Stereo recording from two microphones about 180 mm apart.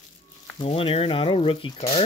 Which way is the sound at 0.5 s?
30° left (ahead or behind).